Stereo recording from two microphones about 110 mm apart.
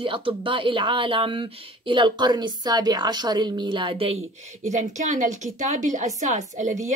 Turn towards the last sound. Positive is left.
turn(degrees=-90)